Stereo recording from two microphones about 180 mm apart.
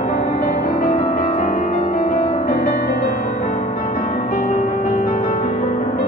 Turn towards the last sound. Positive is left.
turn(degrees=45)  # may be behind; listen again after turning